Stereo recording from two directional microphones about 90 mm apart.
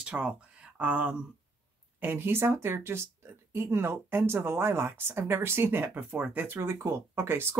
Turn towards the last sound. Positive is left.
turn(degrees=-25)  # may be behind; listen again after turning